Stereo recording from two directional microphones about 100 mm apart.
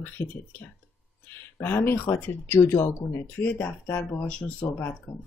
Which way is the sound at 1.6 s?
25° left (ahead or behind).